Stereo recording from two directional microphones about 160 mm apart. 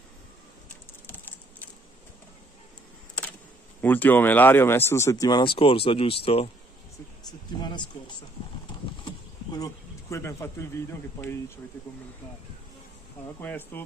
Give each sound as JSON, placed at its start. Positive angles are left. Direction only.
{"t": 1.0, "sound": "typing", "side_deg": 10}
{"t": 3.8, "sound": "speech", "side_deg": 10}
{"t": 7.2, "sound": "speech", "side_deg": 25}
{"t": 9.0, "sound": "speech", "side_deg": 25}
{"t": 13.4, "sound": "speech", "side_deg": 10}